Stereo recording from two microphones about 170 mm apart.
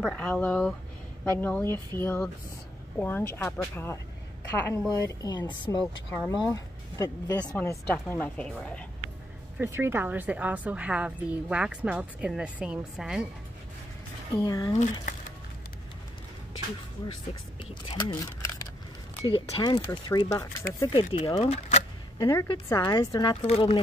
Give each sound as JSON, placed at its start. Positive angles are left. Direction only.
{"t": 0.0, "sound": "speech", "side_deg": 5}
{"t": 9.6, "sound": "a woman's voice", "side_deg": -15}
{"t": 14.3, "sound": "speech", "side_deg": 20}
{"t": 14.8, "sound": "speech", "side_deg": 50}
{"t": 17.8, "sound": "speech", "side_deg": 20}
{"t": 21.0, "sound": "speech", "side_deg": 40}
{"t": 22.2, "sound": "speech", "side_deg": 20}